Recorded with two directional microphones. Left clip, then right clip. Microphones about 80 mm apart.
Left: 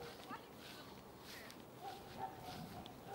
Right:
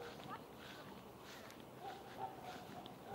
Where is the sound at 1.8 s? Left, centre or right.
Centre.